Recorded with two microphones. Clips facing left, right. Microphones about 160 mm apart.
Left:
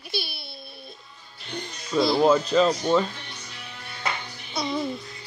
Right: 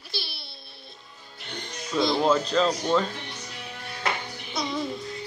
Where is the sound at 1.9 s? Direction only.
5° left (ahead or behind).